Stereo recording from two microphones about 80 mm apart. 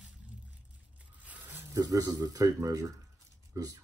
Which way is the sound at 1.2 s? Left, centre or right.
Right.